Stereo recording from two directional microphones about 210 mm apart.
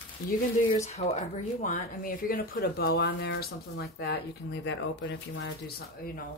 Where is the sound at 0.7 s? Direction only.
35° left (ahead or behind).